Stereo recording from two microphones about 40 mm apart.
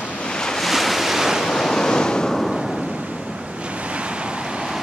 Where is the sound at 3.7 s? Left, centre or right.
Right.